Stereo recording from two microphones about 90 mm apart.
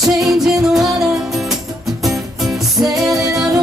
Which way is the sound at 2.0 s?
Centre (ahead or behind).